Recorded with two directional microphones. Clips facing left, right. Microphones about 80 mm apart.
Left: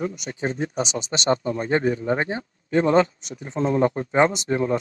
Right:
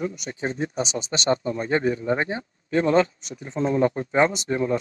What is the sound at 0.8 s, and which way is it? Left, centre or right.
Speech, left.